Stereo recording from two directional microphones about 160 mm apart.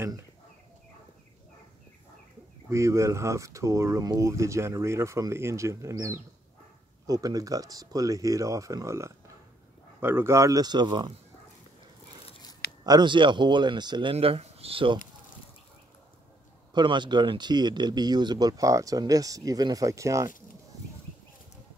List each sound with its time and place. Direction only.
2.7 s speech: 20° right (ahead or behind)
12.3 s a sound: 25° left (ahead or behind)
12.8 s speech: 25° right (ahead or behind)
14.1 s speech: 40° right (ahead or behind)
16.7 s speech: 30° right (ahead or behind)